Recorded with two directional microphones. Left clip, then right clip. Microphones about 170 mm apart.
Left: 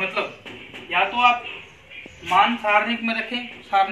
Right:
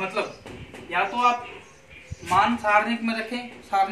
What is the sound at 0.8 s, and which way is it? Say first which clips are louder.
A man's voice: left 4 dB; 10° right (ahead or behind).